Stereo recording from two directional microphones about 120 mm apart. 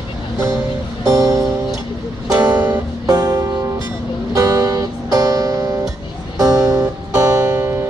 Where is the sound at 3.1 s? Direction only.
35° right (ahead or behind).